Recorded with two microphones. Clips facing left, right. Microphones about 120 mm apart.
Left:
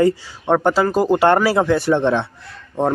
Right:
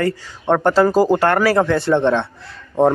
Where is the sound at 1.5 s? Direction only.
10° left (ahead or behind).